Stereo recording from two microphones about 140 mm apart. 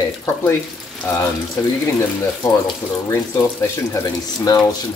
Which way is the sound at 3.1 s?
20° left (ahead or behind).